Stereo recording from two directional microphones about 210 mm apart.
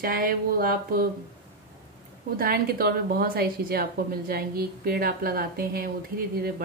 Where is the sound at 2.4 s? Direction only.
45° right (ahead or behind).